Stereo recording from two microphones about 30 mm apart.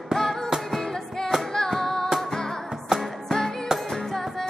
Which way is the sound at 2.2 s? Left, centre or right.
Centre.